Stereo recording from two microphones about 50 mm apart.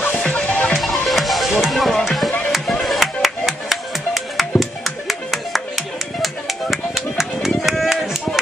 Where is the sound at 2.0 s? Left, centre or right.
Centre.